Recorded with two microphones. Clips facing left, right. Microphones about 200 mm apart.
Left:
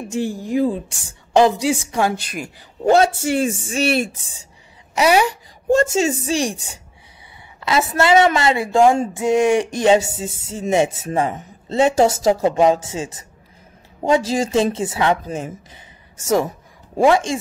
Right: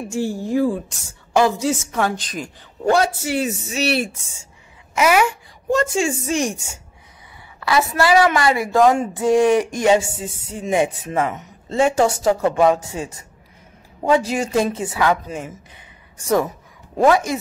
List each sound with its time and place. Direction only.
0.1 s a woman's voice: 15° left (ahead or behind)
2.8 s a woman's voice: 25° left (ahead or behind)
3.7 s speech: 50° left (ahead or behind)
4.2 s a child's voice: 35° left (ahead or behind)
7.6 s a woman's voice: 25° left (ahead or behind)
9.7 s a woman's voice: 35° left (ahead or behind)
14.1 s a woman's voice: 30° left (ahead or behind)
17.1 s a woman's voice: 25° left (ahead or behind)